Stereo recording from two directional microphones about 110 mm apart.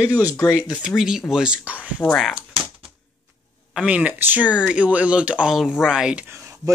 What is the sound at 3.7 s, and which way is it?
Speech, 10° right (ahead or behind).